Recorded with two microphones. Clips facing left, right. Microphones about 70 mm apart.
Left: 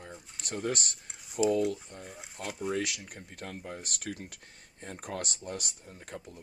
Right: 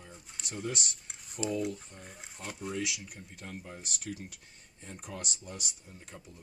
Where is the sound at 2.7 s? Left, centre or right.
Left.